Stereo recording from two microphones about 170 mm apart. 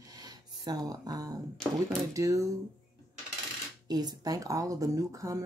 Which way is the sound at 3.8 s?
25° right (ahead or behind).